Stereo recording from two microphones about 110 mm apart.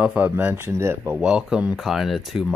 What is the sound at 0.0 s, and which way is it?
Speech, 10° right (ahead or behind).